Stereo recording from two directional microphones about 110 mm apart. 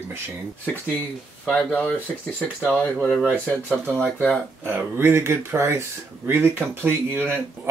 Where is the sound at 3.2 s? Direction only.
5° right (ahead or behind).